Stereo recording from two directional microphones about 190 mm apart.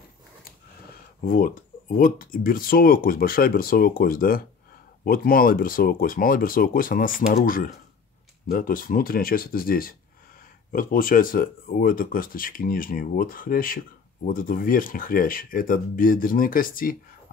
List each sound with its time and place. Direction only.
1.2 s speech: 45° left (ahead or behind)